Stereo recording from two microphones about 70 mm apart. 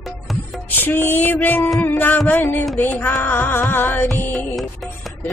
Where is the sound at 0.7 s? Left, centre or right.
Left.